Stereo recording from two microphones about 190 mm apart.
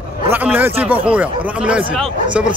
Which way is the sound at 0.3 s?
10° right (ahead or behind).